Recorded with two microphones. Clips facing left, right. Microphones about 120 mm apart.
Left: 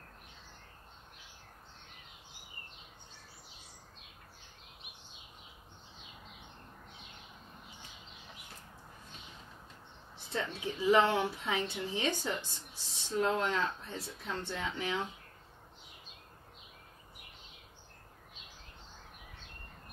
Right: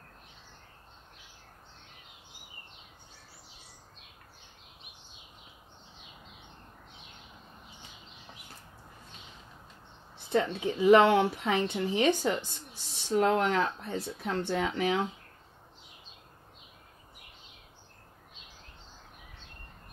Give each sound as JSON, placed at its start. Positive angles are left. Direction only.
{"t": 10.1, "sound": "speech", "side_deg": -60}
{"t": 11.9, "sound": "a woman's voice", "side_deg": -15}
{"t": 12.9, "sound": "speech", "side_deg": -65}